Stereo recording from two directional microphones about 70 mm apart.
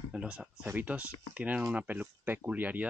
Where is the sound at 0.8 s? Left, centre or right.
Right.